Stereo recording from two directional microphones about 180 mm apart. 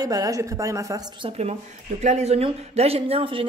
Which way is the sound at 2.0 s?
35° right (ahead or behind).